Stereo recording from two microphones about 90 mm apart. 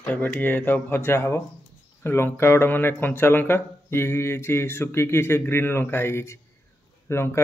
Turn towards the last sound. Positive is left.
turn(degrees=30)  # may be behind; listen again after turning